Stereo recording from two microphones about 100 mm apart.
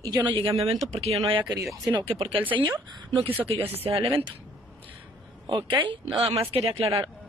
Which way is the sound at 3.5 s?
70° right (ahead or behind).